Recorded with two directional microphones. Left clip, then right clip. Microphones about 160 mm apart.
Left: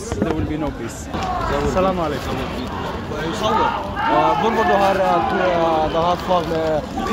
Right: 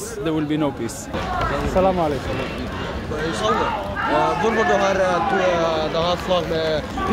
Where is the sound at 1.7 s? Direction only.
35° right (ahead or behind).